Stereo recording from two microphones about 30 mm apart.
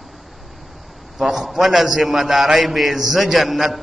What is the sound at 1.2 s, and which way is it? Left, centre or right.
Mantra, centre.